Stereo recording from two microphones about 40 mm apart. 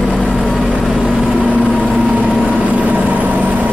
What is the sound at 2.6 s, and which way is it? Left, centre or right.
Vehicle, right.